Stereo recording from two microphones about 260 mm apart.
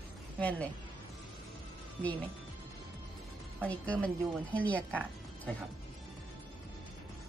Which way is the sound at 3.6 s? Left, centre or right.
Centre.